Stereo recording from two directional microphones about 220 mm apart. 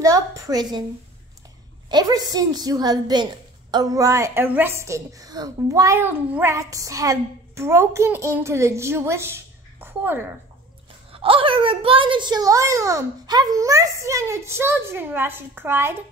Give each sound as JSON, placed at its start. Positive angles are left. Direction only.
{"t": 0.0, "sound": "a woman's voice", "side_deg": -15}
{"t": 1.9, "sound": "a woman's voice", "side_deg": -20}
{"t": 11.1, "sound": "a woman's voice", "side_deg": -25}